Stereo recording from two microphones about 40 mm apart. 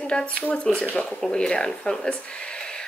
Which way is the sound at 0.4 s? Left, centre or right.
Left.